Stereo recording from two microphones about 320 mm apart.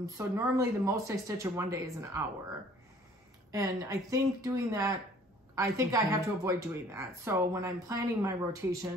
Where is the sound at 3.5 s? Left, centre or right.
Centre.